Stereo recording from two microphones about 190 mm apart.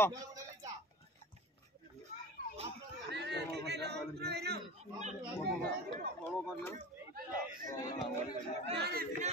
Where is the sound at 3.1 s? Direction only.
65° right (ahead or behind).